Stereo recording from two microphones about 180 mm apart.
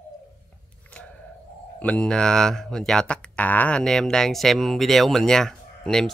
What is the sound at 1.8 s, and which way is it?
Speech, 5° left (ahead or behind).